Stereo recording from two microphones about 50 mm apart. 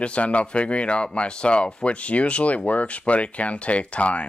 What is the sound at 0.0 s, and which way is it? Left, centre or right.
Speech, left.